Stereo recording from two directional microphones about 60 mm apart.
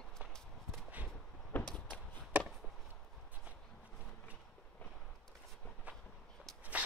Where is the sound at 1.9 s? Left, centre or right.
Centre.